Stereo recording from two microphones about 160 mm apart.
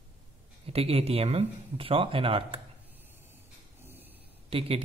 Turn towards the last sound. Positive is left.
turn(degrees=-35)  # may be behind; listen again after turning